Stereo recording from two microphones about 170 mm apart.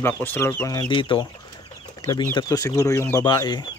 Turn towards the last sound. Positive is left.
turn(degrees=25)  # may be behind; listen again after turning